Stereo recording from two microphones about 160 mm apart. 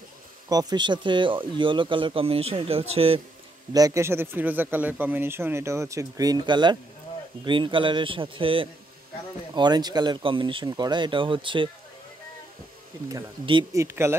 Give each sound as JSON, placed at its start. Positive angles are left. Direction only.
{"t": 0.5, "sound": "speech", "side_deg": -25}
{"t": 3.7, "sound": "speech", "side_deg": -20}
{"t": 13.1, "sound": "speech", "side_deg": -30}
{"t": 13.7, "sound": "speech", "side_deg": -15}